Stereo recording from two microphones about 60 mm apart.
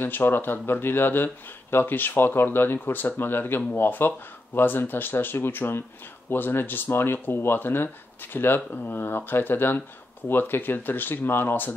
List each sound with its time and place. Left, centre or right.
0.0 s speech: left